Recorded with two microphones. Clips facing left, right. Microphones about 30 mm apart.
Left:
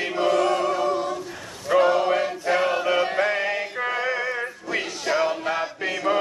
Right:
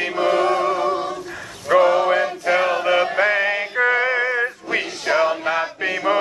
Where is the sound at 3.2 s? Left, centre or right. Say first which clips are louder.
Right 5 dB; right.